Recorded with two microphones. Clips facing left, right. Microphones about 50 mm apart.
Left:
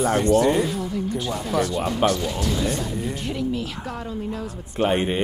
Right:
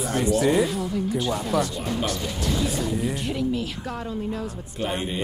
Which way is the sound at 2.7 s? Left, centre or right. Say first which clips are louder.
Right 1 dB; centre.